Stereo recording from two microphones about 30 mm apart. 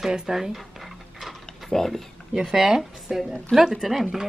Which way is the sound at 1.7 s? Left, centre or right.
Centre.